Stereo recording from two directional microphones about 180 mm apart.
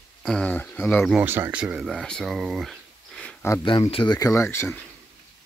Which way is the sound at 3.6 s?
30° left (ahead or behind).